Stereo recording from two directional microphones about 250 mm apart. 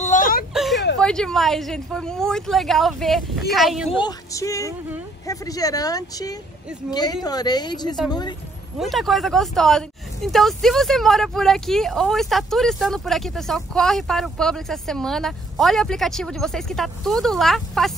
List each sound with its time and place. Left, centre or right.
0.0 s whimper: left
0.5 s a sound: centre
0.9 s speech: centre
4.0 s speech: centre
8.7 s speech: centre